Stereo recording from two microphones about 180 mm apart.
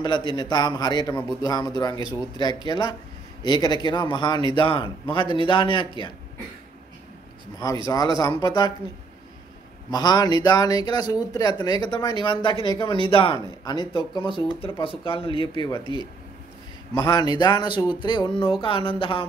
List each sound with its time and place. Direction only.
0.0 s speech: 25° left (ahead or behind)
7.5 s speech: 20° left (ahead or behind)
9.8 s speech: 20° left (ahead or behind)
16.9 s speech: 25° left (ahead or behind)